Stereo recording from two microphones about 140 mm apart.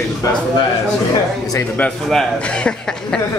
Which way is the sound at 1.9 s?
5° left (ahead or behind).